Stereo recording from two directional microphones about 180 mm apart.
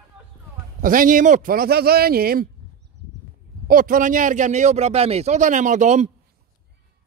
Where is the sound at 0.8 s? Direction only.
50° right (ahead or behind).